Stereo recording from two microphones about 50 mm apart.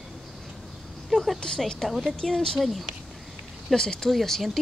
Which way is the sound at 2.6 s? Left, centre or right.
Centre.